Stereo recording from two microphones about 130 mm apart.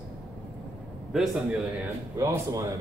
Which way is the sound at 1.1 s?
Centre (ahead or behind).